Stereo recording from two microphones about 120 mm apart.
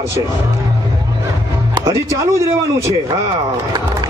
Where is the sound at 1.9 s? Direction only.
25° right (ahead or behind).